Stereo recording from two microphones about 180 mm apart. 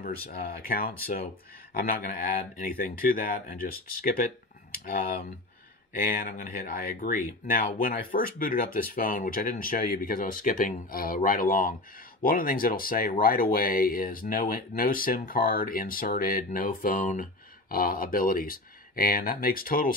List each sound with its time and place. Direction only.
0.0 s speech: 55° left (ahead or behind)